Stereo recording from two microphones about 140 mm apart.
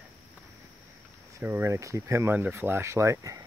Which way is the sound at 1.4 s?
15° right (ahead or behind).